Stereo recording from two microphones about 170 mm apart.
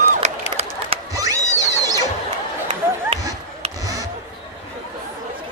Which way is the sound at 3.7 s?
20° right (ahead or behind).